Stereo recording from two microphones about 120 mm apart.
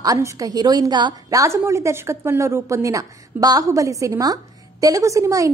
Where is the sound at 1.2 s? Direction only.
25° right (ahead or behind).